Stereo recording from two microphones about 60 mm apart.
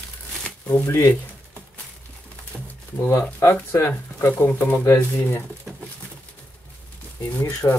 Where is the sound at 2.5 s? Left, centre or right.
Centre.